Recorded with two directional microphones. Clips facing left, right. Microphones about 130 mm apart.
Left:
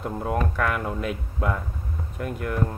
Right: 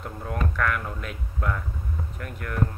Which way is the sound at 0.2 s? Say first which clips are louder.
Left 2 dB; 25° left (ahead or behind).